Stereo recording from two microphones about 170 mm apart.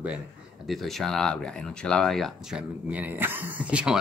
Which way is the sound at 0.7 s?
Centre (ahead or behind).